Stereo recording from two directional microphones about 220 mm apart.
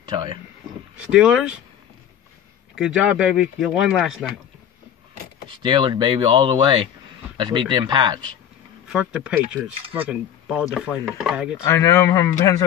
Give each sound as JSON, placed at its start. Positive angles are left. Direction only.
{"t": 0.1, "sound": "speech", "side_deg": -20}
{"t": 1.1, "sound": "speech", "side_deg": -5}
{"t": 2.7, "sound": "speech", "side_deg": -5}
{"t": 5.5, "sound": "speech", "side_deg": -20}
{"t": 8.8, "sound": "speech", "side_deg": -5}
{"t": 9.8, "sound": "speech", "side_deg": -25}
{"t": 10.0, "sound": "speech", "side_deg": -5}
{"t": 11.6, "sound": "speech", "side_deg": 10}